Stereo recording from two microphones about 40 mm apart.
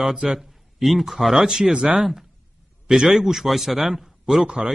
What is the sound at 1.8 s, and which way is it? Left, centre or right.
Speech, right.